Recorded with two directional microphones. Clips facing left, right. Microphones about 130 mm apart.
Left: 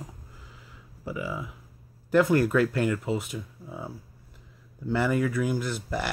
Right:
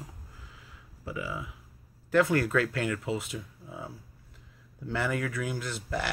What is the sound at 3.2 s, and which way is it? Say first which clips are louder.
Speech: left 3 dB; 15° left (ahead or behind).